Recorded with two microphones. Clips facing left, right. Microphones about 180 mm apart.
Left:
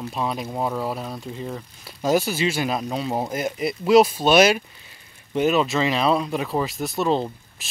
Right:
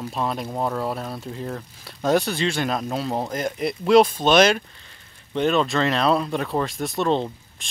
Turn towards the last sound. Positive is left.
turn(degrees=5)  # may be behind; listen again after turning